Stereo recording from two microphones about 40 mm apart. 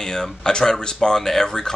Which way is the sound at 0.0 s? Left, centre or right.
Centre.